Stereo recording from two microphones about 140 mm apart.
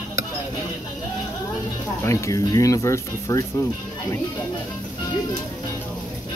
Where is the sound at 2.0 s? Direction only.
20° left (ahead or behind).